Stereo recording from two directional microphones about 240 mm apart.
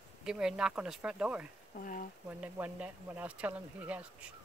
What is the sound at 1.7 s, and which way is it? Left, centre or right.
Speech, left.